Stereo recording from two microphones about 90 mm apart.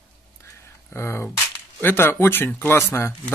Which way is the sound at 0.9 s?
25° left (ahead or behind).